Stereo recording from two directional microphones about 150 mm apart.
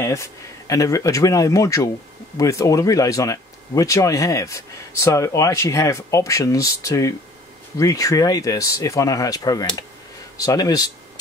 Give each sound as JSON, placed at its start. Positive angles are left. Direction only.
{"t": 0.0, "sound": "speech", "side_deg": 20}